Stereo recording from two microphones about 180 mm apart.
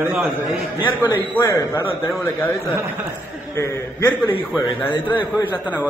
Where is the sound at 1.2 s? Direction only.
10° left (ahead or behind).